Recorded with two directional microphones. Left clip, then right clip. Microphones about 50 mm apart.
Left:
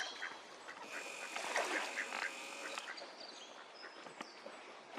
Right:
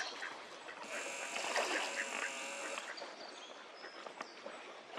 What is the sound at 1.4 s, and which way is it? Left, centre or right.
Splash, centre.